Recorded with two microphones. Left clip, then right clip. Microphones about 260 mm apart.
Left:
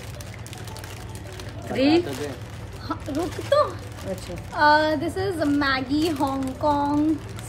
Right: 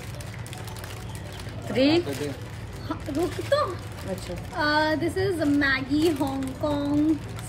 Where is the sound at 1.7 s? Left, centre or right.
Centre.